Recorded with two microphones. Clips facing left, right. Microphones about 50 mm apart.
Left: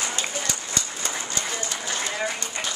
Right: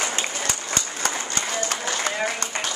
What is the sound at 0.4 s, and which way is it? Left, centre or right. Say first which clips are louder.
Applause: right 2 dB; right.